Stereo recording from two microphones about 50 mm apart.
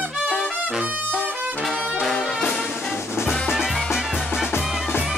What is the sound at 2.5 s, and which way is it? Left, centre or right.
Music, centre.